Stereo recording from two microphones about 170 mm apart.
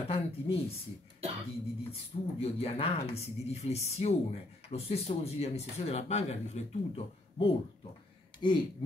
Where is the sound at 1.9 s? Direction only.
35° left (ahead or behind).